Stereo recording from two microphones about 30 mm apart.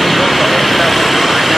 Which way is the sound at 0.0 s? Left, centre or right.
Centre.